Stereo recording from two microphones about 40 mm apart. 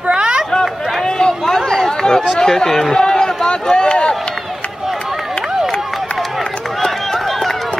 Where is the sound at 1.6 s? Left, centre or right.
Centre.